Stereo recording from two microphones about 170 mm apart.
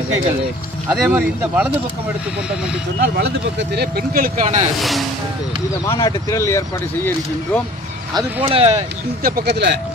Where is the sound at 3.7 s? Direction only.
65° right (ahead or behind); by 4.6 s 45° right (ahead or behind).